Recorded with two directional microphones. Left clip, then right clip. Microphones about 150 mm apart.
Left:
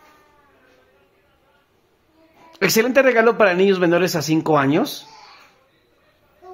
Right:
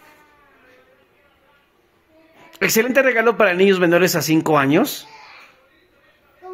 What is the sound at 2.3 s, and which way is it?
Speech, 5° right (ahead or behind).